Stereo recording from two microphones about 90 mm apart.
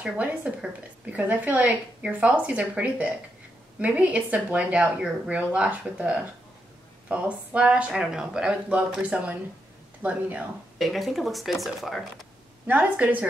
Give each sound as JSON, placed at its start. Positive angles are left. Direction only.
{"t": 0.0, "sound": "a woman's voice", "side_deg": -20}
{"t": 10.8, "sound": "speech", "side_deg": 0}
{"t": 12.6, "sound": "a woman's voice", "side_deg": -15}